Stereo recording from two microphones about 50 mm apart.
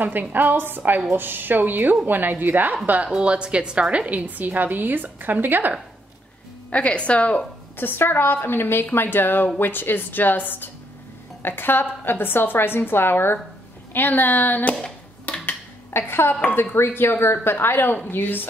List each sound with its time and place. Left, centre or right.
0.0 s a woman's voice: right
3.1 s a woman's voice: right
6.7 s a woman's voice: left
7.7 s a woman's voice: left
15.2 s a sound: left
15.9 s a woman's voice: left